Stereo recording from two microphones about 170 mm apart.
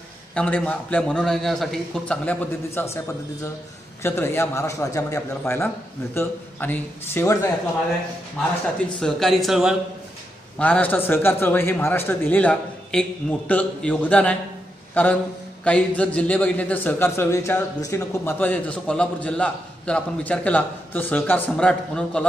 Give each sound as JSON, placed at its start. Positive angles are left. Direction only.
{"t": 0.3, "sound": "a man's voice", "side_deg": 5}
{"t": 4.0, "sound": "a man's voice", "side_deg": 15}
{"t": 9.0, "sound": "a man's voice", "side_deg": 0}
{"t": 10.6, "sound": "a man's voice", "side_deg": 10}